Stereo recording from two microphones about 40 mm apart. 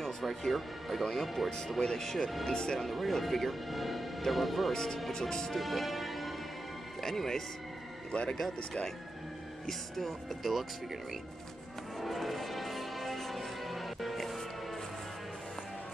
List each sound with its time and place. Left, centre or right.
0.2 s a man's voice: centre
1.8 s speech: centre
2.4 s speech: centre
2.8 s a man's voice: centre
4.7 s speech: centre
5.5 s speech: centre
8.1 s speech: left
9.7 s a man's voice: centre
12.0 s music: centre